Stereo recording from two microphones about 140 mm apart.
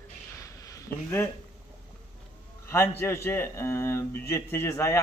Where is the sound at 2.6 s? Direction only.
15° left (ahead or behind).